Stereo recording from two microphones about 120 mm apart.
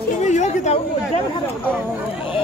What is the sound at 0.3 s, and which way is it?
Chatter, 80° left.